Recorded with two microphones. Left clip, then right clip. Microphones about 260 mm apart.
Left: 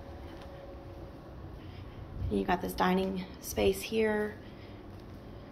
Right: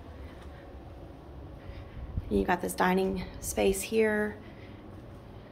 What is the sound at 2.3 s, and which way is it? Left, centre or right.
A woman's voice, centre.